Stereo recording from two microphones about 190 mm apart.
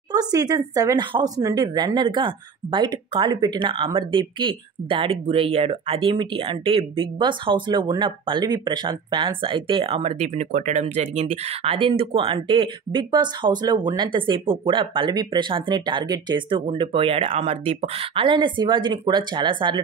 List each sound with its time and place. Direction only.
0.1 s speech: 20° right (ahead or behind)